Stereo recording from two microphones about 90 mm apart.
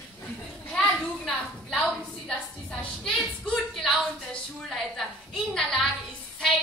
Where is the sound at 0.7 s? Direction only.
10° left (ahead or behind).